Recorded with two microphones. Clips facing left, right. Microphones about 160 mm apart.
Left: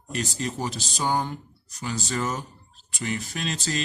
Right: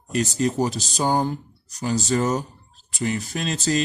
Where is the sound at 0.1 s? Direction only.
40° right (ahead or behind).